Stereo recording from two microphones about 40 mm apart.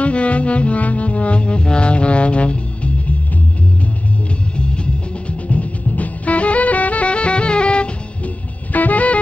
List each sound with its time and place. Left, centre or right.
0.0 s music: left
5.5 s music: left
8.7 s music: left